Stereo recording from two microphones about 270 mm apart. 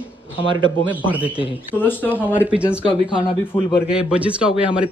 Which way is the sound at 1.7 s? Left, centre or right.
Centre.